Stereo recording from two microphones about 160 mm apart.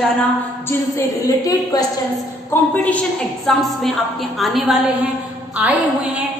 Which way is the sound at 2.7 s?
10° left (ahead or behind).